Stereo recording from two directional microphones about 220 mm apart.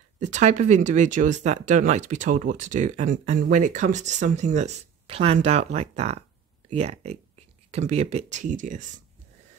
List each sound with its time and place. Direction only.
0.2 s speech: 30° right (ahead or behind)